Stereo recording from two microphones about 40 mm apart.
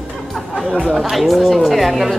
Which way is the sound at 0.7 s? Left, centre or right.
Left.